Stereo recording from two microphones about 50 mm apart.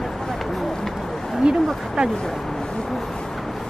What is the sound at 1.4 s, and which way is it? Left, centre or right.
Speech, centre.